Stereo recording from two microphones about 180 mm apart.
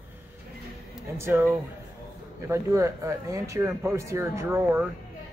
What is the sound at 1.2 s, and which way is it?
Speech, 10° right (ahead or behind).